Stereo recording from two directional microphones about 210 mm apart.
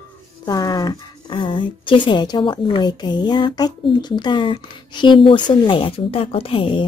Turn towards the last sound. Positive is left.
turn(degrees=25)  # may be behind; listen again after turning